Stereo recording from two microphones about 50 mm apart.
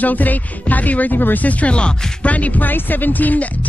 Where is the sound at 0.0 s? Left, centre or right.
Left.